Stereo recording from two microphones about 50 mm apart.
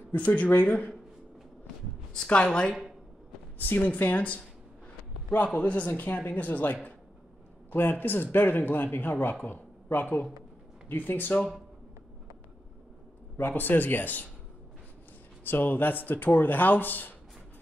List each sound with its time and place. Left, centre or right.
0.1 s a man's voice: left
2.2 s a woman's voice: centre
3.5 s a man's voice: left
5.5 s a man's voice: left
13.4 s a man's voice: left
15.4 s a man's voice: left